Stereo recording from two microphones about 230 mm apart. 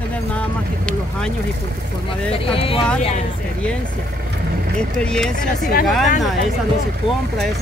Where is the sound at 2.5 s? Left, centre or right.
Left.